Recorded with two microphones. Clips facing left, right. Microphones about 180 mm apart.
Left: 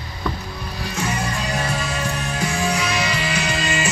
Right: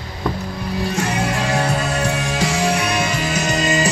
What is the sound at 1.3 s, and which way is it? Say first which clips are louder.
Music: right 5 dB; 75° right (ahead or behind).